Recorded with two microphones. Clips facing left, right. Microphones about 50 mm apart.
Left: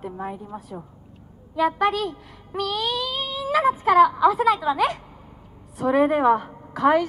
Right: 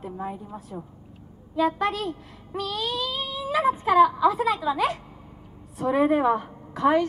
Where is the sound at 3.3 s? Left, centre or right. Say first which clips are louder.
Left 4 dB; left.